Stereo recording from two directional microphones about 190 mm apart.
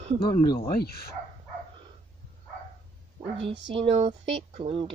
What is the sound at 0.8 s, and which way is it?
Speech, 55° left (ahead or behind).